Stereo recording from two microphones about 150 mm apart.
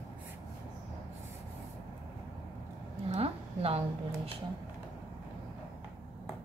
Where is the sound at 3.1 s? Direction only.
40° right (ahead or behind).